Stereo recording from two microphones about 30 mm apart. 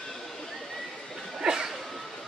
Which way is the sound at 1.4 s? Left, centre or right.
Right.